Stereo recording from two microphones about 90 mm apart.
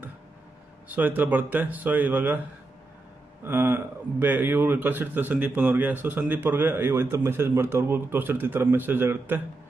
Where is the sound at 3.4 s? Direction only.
25° right (ahead or behind).